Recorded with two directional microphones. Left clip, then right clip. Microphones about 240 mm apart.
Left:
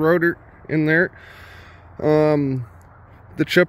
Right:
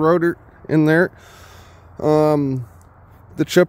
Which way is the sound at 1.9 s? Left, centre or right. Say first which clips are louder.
Right 1 dB; centre.